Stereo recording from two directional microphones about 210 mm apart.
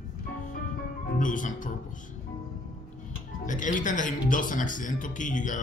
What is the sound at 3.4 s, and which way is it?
Speech, 35° left (ahead or behind).